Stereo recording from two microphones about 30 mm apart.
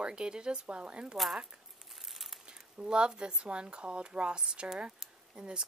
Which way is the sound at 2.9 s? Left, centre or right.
Right.